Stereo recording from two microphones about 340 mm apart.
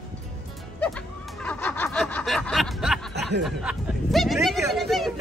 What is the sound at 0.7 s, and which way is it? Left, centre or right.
Snicker, centre.